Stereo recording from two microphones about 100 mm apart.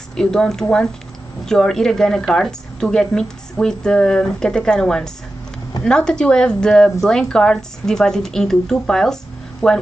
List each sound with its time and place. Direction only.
0.1 s a woman's voice: 5° left (ahead or behind)